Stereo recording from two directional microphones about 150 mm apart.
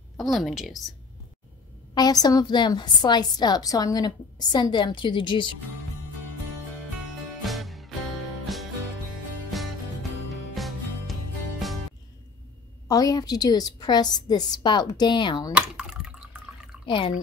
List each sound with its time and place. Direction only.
0.2 s a woman's voice: centre (ahead or behind)
2.0 s a woman's voice: 25° left (ahead or behind)
7.4 s music: centre (ahead or behind)
9.5 s music: centre (ahead or behind)
12.8 s a woman's voice: 25° left (ahead or behind)
15.5 s water: 5° right (ahead or behind)
16.8 s speech: 35° left (ahead or behind)